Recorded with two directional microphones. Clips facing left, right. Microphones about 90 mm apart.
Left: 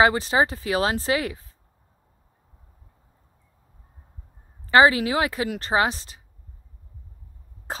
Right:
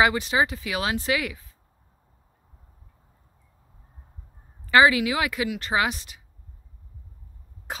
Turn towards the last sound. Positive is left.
turn(degrees=35)  # may be behind; listen again after turning